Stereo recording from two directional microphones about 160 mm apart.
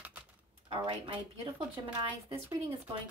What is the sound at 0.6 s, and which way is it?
Speech, 35° right (ahead or behind).